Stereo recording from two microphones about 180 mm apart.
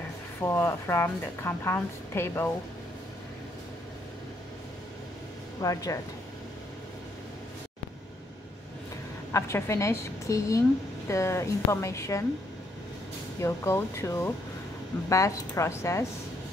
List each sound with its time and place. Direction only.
0.4 s a woman's voice: 15° left (ahead or behind)
5.6 s speech: 20° left (ahead or behind)
9.3 s a woman's voice: 15° left (ahead or behind)
13.4 s a woman's voice: 15° left (ahead or behind)